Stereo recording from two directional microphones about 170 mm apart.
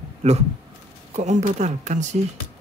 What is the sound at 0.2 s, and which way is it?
Speech, 40° right (ahead or behind).